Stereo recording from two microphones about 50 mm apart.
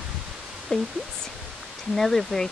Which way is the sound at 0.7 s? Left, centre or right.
Centre.